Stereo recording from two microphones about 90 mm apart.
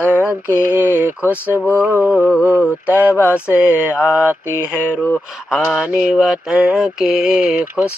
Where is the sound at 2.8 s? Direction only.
15° right (ahead or behind).